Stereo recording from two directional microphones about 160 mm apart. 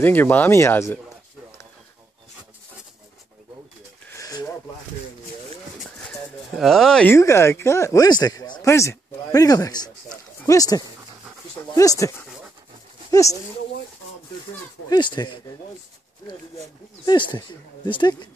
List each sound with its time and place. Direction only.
0.0 s speech: 10° left (ahead or behind)
4.1 s a sound: 20° left (ahead or behind)
5.9 s a sound: 5° left (ahead or behind)
7.2 s speech: 15° left (ahead or behind)
14.9 s speech: 30° left (ahead or behind)
17.0 s speech: 30° left (ahead or behind)